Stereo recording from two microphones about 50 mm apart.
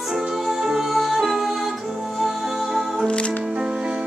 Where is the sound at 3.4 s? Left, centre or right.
Centre.